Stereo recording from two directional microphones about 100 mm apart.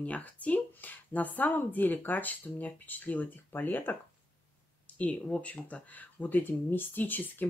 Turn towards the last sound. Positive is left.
turn(degrees=20)  # may be behind; listen again after turning